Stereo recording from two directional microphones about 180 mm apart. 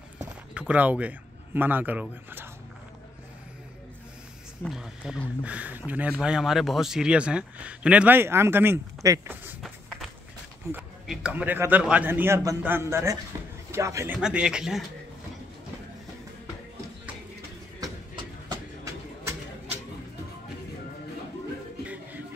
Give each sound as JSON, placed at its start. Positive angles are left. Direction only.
{"t": 0.6, "sound": "speech", "side_deg": -5}
{"t": 4.6, "sound": "speech", "side_deg": -5}
{"t": 9.6, "sound": "run", "side_deg": 0}
{"t": 10.7, "sound": "speech", "side_deg": -5}
{"t": 17.7, "sound": "a sound", "side_deg": -20}